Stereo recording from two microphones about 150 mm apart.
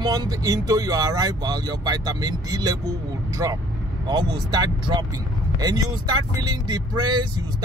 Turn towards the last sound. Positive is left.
turn(degrees=-30)  # may be behind; listen again after turning